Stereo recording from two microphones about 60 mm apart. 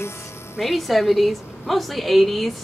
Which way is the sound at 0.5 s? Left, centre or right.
Centre.